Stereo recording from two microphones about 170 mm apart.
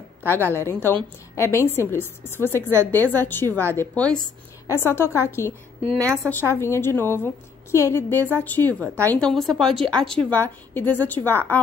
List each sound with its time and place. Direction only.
0.3 s a woman's voice: 10° left (ahead or behind)
5.9 s a woman's voice: 15° right (ahead or behind)
6.6 s a woman's voice: 15° left (ahead or behind)